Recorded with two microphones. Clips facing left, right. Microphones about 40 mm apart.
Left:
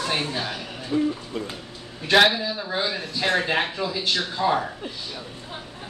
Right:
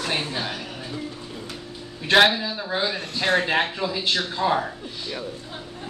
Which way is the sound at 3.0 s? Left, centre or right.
Right.